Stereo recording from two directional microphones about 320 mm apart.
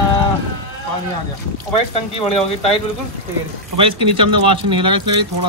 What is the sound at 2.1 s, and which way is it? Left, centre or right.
Speech, centre.